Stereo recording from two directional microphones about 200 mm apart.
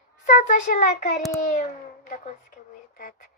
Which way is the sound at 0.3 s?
40° left (ahead or behind).